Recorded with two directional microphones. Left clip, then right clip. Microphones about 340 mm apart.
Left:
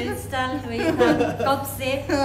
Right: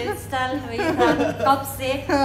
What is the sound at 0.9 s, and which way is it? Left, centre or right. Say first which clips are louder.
A woman's voice: even; centre.